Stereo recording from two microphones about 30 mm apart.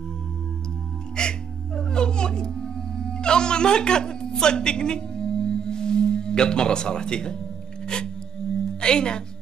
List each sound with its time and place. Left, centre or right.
1.2 s music: left
7.8 s singing bowl: left